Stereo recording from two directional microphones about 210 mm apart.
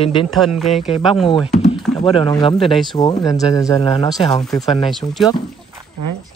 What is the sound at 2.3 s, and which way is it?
Speech, 20° left (ahead or behind).